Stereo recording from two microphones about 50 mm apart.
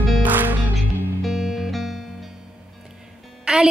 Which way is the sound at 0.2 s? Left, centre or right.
Right.